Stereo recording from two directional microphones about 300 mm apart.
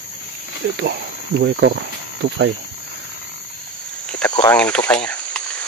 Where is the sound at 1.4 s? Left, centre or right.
Right.